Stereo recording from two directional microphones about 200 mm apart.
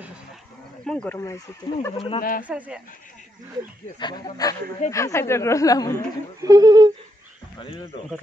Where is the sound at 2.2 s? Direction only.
45° left (ahead or behind).